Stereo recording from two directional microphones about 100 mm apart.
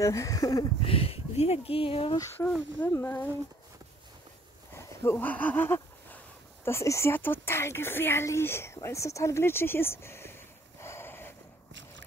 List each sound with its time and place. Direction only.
0.0 s speech: 30° left (ahead or behind)
0.8 s speech: 70° left (ahead or behind)
2.4 s speech: 25° left (ahead or behind)
4.7 s speech: 25° left (ahead or behind)